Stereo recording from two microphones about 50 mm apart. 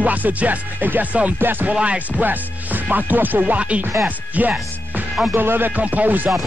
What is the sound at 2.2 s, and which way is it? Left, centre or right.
Music, right.